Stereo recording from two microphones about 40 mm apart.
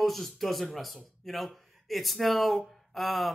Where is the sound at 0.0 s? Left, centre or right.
Centre.